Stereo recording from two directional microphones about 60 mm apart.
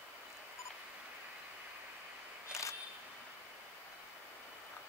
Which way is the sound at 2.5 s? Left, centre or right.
Centre.